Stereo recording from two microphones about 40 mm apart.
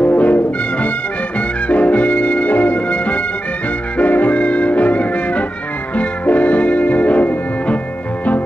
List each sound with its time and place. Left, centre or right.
0.0 s music: left
1.7 s music: left